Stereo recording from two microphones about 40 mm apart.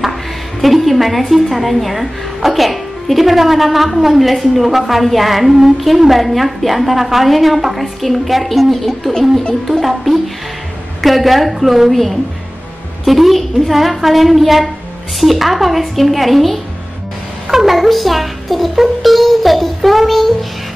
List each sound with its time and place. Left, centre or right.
0.6 s a woman's voice: centre